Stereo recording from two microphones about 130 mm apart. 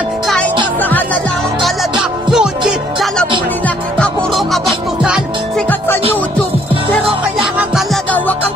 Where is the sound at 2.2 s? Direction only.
5° right (ahead or behind).